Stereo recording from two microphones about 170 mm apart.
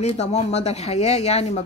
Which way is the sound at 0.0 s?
40° left (ahead or behind).